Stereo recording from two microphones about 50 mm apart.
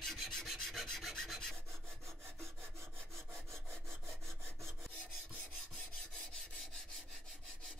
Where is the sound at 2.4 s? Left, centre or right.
Centre.